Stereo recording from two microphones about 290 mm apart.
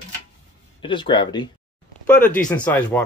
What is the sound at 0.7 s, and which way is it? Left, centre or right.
Speech, centre.